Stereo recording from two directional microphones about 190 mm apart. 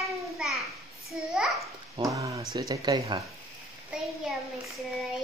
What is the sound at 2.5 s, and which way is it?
Speech, 20° right (ahead or behind).